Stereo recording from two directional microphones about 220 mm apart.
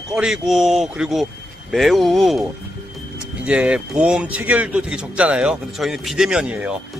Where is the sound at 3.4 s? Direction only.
5° right (ahead or behind).